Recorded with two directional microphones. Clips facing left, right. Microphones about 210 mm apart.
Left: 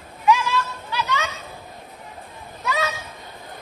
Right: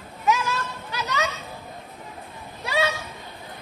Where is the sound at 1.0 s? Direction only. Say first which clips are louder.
Right 1 dB; 40° right (ahead or behind).